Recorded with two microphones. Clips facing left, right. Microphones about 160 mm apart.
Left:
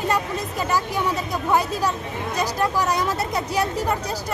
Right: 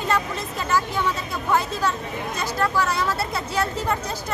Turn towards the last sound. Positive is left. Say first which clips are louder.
# left 2 dB
turn(degrees=15)  # may be behind; listen again after turning